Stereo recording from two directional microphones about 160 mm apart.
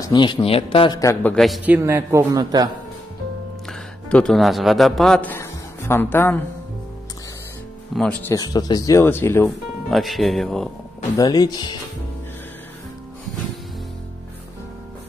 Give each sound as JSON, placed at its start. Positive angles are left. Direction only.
{"t": 0.0, "sound": "a man's voice", "side_deg": 30}
{"t": 1.2, "sound": "speech", "side_deg": 5}
{"t": 1.6, "sound": "speech", "side_deg": -15}
{"t": 4.1, "sound": "a man's voice", "side_deg": 5}
{"t": 7.9, "sound": "speech", "side_deg": 5}
{"t": 8.3, "sound": "speech", "side_deg": 25}
{"t": 9.8, "sound": "speech", "side_deg": 0}
{"t": 11.1, "sound": "speech", "side_deg": 25}